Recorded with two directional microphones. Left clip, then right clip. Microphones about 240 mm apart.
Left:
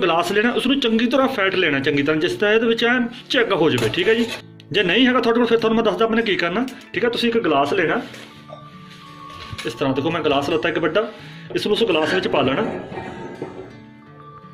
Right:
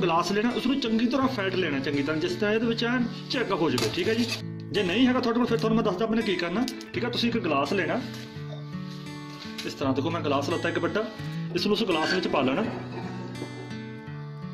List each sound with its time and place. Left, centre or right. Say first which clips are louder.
0.0 s speech: left 7 dB; right
9.7 s speech: left 7 dB; right